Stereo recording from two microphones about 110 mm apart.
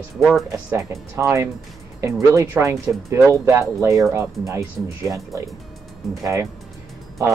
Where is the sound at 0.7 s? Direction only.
25° right (ahead or behind).